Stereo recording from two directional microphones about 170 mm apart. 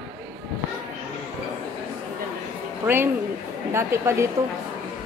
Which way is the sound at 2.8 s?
15° right (ahead or behind).